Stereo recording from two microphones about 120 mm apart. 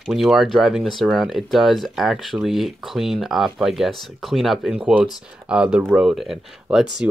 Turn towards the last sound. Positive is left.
turn(degrees=-5)  # may be behind; listen again after turning